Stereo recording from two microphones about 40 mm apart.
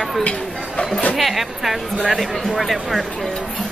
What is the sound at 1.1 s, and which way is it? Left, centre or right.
Speech, centre.